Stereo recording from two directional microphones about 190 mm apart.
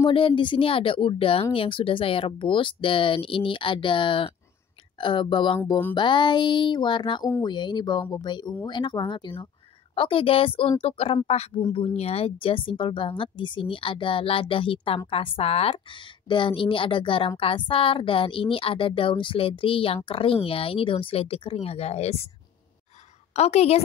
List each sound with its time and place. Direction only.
0.0 s speech: 25° left (ahead or behind)
23.3 s a woman's voice: 35° left (ahead or behind)